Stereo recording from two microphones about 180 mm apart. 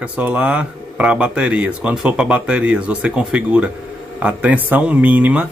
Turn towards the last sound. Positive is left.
turn(degrees=-10)  # may be behind; listen again after turning